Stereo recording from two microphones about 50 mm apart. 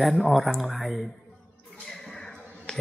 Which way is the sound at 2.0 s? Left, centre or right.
Centre.